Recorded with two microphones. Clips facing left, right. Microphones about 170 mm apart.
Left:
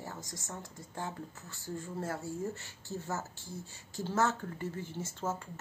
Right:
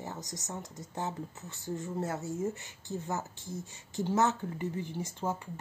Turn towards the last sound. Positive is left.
turn(degrees=-15)  # may be behind; listen again after turning